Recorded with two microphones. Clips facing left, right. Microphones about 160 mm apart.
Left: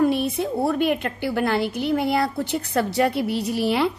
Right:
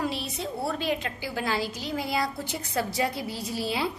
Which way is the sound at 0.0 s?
55° left (ahead or behind).